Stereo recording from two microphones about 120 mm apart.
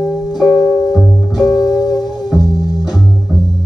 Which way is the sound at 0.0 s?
5° right (ahead or behind).